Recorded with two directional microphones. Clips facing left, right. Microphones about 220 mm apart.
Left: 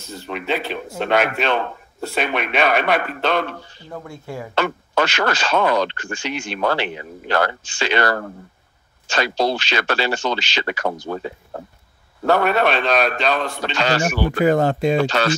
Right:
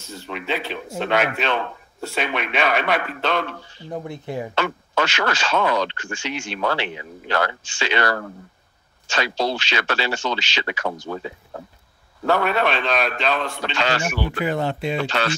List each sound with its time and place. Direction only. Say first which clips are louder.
0.0 s speech: left 3 dB; 40° left (ahead or behind)
3.9 s speech: right 3 dB; 20° right (ahead or behind)
4.6 s speech: left 4 dB; 45° left (ahead or behind)
5.4 s speech: left 3 dB; 50° left (ahead or behind)
6.2 s speech: left 3 dB; 55° left (ahead or behind)